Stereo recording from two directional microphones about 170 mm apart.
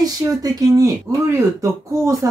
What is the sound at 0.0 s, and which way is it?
Speech, 20° right (ahead or behind).